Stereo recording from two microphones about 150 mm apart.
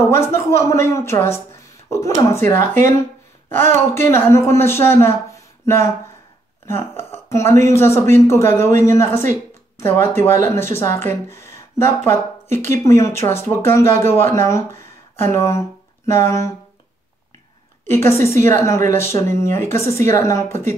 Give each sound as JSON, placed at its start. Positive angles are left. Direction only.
{"t": 0.0, "sound": "a woman's voice", "side_deg": 15}
{"t": 17.8, "sound": "a woman's voice", "side_deg": 15}